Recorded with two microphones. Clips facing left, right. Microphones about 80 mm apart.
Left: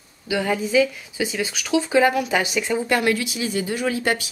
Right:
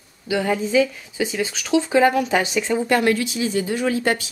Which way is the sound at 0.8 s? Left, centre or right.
Centre.